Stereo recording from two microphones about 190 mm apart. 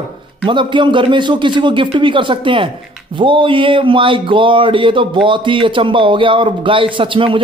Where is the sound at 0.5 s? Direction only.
25° right (ahead or behind).